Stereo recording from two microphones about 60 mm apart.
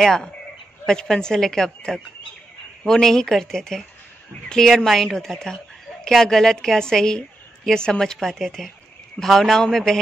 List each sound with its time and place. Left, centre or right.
0.0 s a woman's voice: centre